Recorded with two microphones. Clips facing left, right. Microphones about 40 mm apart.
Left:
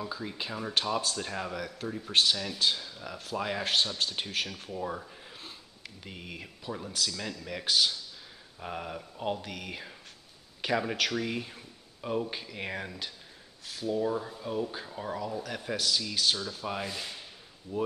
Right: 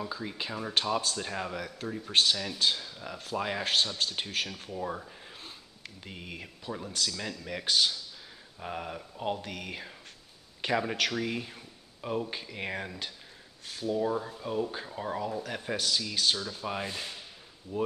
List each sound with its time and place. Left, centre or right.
0.0 s speech: centre
16.3 s rub: centre